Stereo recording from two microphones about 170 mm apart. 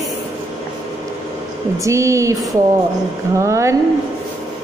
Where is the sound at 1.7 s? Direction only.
20° right (ahead or behind).